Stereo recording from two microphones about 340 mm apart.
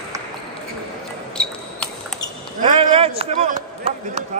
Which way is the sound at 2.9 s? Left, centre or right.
Centre.